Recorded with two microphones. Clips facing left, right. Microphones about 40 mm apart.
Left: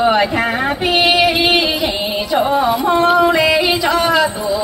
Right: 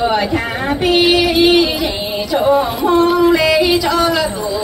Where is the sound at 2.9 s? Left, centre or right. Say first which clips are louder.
Right 1 dB; left.